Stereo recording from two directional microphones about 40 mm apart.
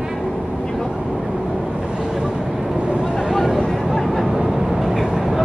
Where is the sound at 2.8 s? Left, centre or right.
Right.